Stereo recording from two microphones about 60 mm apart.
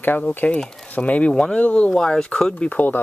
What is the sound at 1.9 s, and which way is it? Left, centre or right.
Speech, centre.